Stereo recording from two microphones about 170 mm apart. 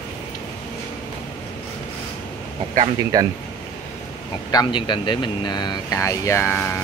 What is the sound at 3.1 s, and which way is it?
Speech, 20° right (ahead or behind).